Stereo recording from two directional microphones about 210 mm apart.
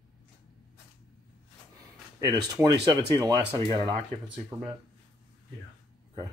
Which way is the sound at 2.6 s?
20° right (ahead or behind).